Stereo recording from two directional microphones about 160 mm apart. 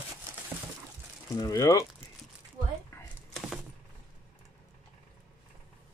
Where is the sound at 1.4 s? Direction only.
25° left (ahead or behind).